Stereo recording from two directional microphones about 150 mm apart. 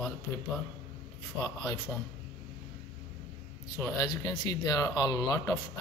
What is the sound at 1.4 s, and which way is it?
Speech, 30° left (ahead or behind).